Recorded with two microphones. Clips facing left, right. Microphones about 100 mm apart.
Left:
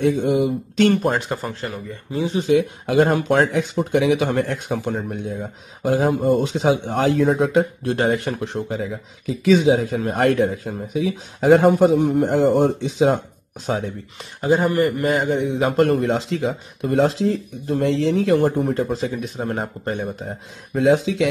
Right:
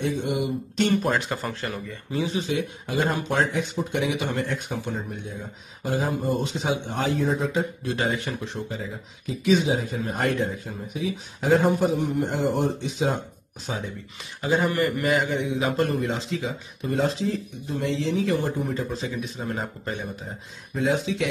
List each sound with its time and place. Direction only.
0.0 s speech: 90° left
1.3 s speech: 25° left (ahead or behind)
2.5 s speech: 70° left (ahead or behind)
9.3 s speech: 90° left
13.7 s speech: 70° left (ahead or behind)
14.4 s a man's voice: 40° left (ahead or behind)
15.7 s speech: 80° left; by 20.0 s 50° left (ahead or behind)
20.7 s speech: 70° left (ahead or behind)